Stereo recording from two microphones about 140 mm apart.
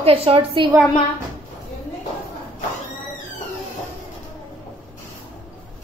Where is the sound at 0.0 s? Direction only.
45° right (ahead or behind).